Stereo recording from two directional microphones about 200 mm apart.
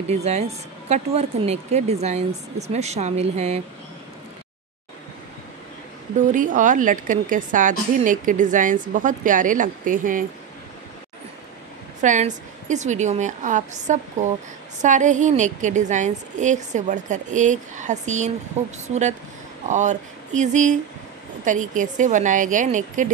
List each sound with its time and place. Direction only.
0.1 s a woman's voice: 35° right (ahead or behind)
6.1 s a woman's voice: 40° right (ahead or behind)
12.0 s a woman's voice: 40° right (ahead or behind)
19.7 s a woman's voice: 35° right (ahead or behind)